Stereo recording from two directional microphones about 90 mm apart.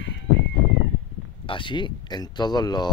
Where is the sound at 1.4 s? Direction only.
65° left (ahead or behind).